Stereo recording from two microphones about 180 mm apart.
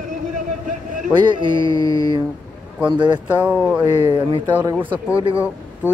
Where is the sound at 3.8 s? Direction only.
25° right (ahead or behind).